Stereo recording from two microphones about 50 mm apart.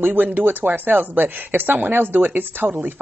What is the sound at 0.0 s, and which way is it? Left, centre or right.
Speech, right.